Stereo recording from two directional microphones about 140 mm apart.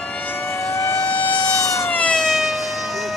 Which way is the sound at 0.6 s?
20° left (ahead or behind).